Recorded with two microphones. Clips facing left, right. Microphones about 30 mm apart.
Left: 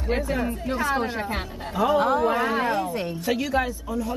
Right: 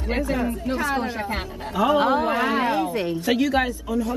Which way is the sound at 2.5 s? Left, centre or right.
Centre.